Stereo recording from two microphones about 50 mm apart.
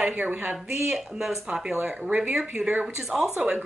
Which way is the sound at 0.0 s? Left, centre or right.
Right.